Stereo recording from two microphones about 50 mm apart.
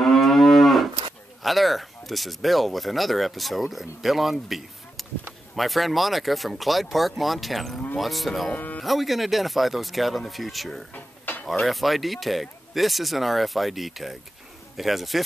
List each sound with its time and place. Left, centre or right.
0.0 s moo: centre
1.4 s speech: centre
10.9 s cutlery: left
11.4 s speech: centre